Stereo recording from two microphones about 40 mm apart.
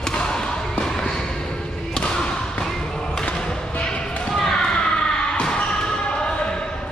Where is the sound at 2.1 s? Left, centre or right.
Centre.